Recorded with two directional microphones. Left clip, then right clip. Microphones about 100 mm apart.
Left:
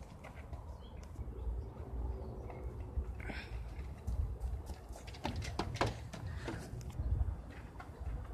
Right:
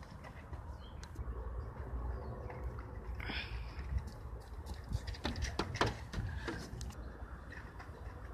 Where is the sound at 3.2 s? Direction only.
Centre (ahead or behind).